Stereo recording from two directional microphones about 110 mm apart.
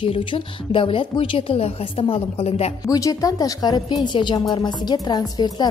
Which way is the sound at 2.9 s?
30° left (ahead or behind).